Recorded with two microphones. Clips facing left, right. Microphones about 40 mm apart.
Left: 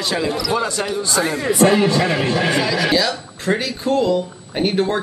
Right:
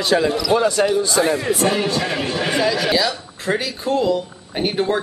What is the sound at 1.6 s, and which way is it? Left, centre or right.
Speech, left.